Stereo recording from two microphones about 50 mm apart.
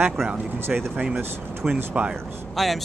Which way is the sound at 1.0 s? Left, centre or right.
Centre.